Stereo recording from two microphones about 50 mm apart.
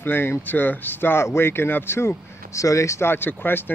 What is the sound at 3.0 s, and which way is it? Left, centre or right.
Speech, left.